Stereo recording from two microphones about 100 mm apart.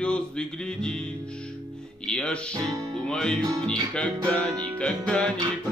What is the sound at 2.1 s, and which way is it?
Speech, 10° left (ahead or behind).